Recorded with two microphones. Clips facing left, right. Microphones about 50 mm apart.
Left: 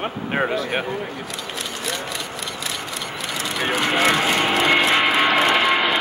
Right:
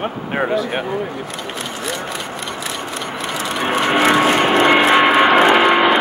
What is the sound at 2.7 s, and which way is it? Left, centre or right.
Vehicle, right.